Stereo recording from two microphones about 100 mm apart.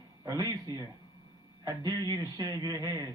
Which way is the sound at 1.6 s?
40° right (ahead or behind).